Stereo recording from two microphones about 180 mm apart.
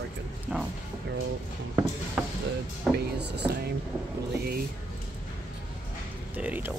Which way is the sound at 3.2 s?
70° right (ahead or behind).